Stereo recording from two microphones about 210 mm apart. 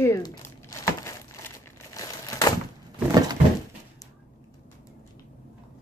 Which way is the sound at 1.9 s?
15° left (ahead or behind).